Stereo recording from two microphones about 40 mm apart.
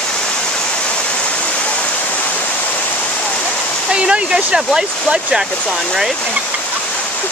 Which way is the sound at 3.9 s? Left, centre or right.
Right.